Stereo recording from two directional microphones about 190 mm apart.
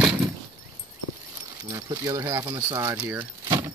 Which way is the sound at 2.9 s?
5° right (ahead or behind).